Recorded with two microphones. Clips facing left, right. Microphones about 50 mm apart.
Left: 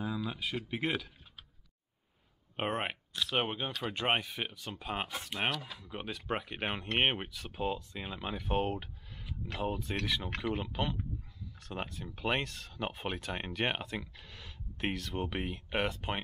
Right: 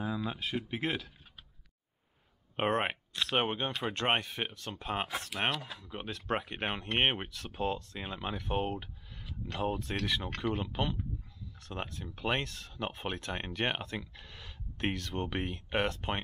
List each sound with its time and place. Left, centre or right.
0.0 s a sound: centre
0.7 s speech: centre
2.5 s speech: centre
12.7 s speech: centre